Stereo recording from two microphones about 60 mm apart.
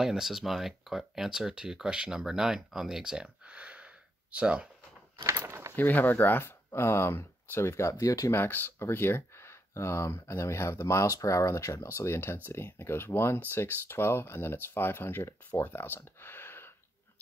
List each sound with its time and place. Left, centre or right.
0.0 s speech: centre
3.0 s a sound: centre
5.2 s speech: right
5.8 s speech: left
8.3 s speech: left